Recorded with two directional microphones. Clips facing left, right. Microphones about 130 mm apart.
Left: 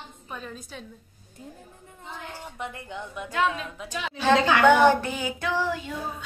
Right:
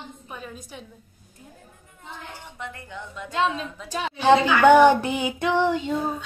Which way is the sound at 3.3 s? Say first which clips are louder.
Right 2 dB; 25° right (ahead or behind).